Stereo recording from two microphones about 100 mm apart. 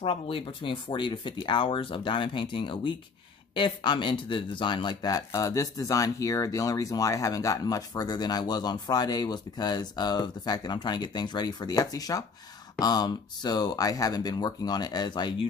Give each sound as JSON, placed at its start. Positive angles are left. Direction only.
{"t": 0.0, "sound": "speech", "side_deg": 65}